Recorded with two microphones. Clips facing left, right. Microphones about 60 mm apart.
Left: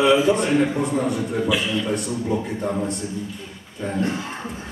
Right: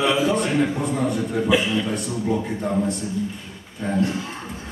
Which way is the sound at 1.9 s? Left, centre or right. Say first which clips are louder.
Even; centre.